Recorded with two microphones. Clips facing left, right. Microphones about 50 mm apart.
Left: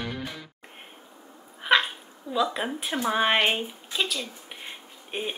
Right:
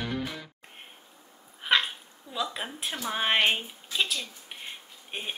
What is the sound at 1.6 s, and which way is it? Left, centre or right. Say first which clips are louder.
Cat: left 4 dB; centre.